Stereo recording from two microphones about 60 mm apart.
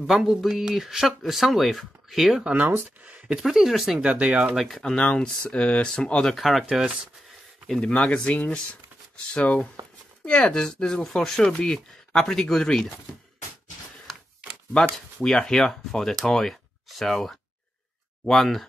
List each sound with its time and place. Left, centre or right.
0.0 s speech: centre
2.5 s speech: right
3.3 s speech: centre
4.0 s speech: right
4.7 s speech: centre
6.3 s speech: centre
6.6 s speech: centre
7.8 s speech: centre
14.7 s speech: centre